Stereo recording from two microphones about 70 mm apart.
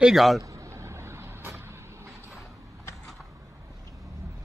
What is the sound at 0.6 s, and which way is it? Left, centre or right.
Vehicle, right.